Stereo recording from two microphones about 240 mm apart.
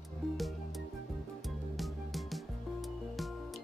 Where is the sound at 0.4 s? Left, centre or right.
Centre.